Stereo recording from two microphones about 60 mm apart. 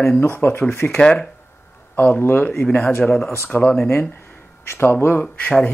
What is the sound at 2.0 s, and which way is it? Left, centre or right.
Speech, left.